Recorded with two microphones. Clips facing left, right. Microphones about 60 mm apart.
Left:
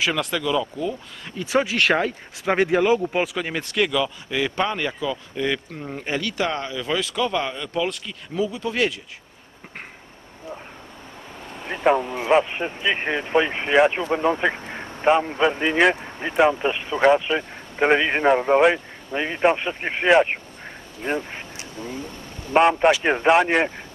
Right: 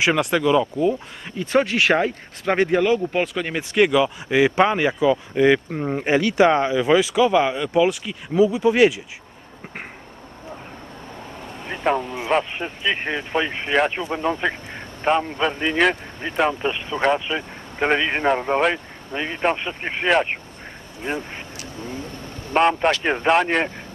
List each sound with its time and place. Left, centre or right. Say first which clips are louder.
0.2 s speech: right 5 dB; right
1.4 s speech: right 2 dB; centre
3.6 s speech: right 6 dB; centre
11.6 s a man's voice: left 2 dB; centre
22.5 s a man's voice: left 2 dB; centre